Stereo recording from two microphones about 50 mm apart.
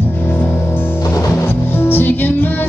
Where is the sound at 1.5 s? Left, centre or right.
Left.